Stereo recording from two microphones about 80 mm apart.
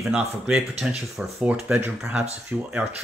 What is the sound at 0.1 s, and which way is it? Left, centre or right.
Speech, centre.